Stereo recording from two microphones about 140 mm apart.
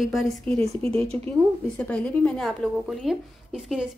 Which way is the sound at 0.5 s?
45° right (ahead or behind).